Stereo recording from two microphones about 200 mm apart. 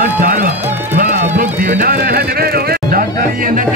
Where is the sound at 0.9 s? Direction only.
40° right (ahead or behind).